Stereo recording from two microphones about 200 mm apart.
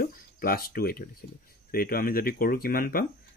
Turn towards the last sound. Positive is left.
turn(degrees=45)  # may be behind; listen again after turning